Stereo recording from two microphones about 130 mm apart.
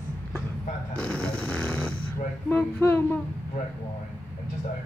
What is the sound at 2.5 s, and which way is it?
Speech, 15° left (ahead or behind).